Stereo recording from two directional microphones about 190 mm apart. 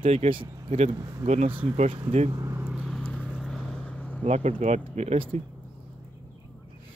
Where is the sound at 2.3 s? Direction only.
15° right (ahead or behind).